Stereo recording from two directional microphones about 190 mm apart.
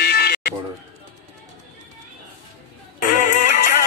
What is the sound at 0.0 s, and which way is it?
Buzzer, 55° left (ahead or behind).